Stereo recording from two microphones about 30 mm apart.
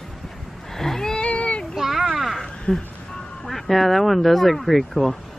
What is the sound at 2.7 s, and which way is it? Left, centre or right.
Speech, left.